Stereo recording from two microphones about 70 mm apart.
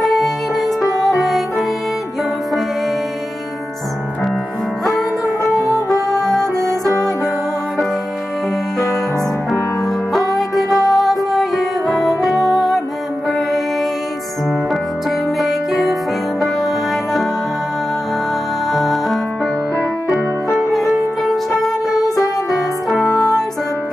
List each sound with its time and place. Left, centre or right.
0.0 s music: centre
4.8 s music: centre
6.7 s music: left
10.3 s music: centre
14.7 s music: centre
18.7 s music: centre